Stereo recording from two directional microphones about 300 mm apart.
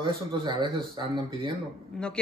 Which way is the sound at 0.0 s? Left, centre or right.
Centre.